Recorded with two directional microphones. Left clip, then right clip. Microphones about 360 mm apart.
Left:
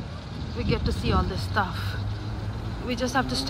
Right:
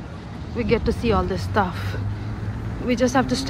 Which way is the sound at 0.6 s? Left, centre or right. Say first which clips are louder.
Right 8 dB; centre.